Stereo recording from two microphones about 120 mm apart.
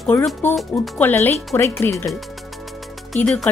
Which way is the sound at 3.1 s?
Centre (ahead or behind).